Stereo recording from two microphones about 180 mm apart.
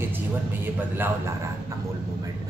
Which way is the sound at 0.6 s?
10° right (ahead or behind).